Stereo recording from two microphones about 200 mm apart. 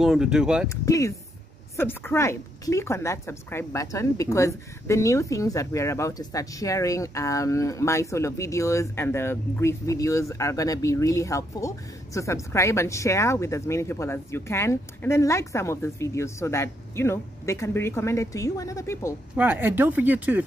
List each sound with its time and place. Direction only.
0.0 s speech: 5° right (ahead or behind)
0.7 s a woman's voice: 15° left (ahead or behind)
19.3 s speech: 5° right (ahead or behind)